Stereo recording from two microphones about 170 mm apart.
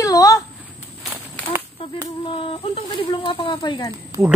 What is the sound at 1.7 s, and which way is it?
Speech, 30° left (ahead or behind).